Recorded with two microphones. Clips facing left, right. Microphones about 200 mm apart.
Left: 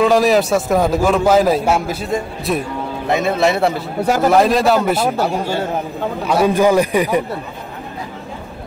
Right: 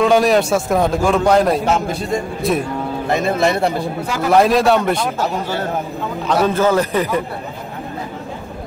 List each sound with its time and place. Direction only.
0.0 s a man's voice: centre (ahead or behind)
4.0 s a man's voice: 40° left (ahead or behind)
4.3 s a man's voice: centre (ahead or behind)
6.2 s a man's voice: 10° left (ahead or behind)